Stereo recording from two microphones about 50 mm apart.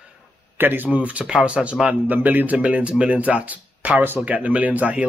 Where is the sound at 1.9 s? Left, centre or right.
Right.